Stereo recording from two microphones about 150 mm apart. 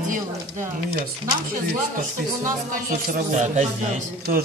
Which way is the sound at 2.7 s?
60° right (ahead or behind).